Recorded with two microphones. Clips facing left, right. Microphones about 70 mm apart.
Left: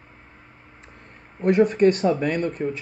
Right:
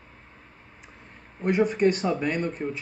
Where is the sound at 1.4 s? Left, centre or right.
Left.